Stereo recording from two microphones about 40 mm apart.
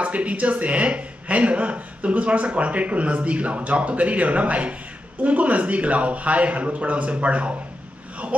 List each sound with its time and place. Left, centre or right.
0.0 s speech: right